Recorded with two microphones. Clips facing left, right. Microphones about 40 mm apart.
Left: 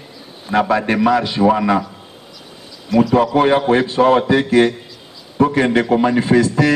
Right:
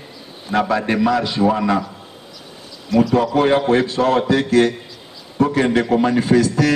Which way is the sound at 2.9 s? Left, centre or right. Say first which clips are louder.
Left 1 dB; centre.